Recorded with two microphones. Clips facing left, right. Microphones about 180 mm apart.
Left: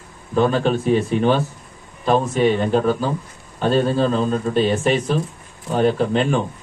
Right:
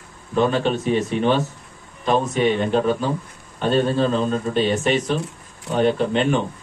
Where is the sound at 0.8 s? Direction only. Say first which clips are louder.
Left 3 dB; 35° left (ahead or behind).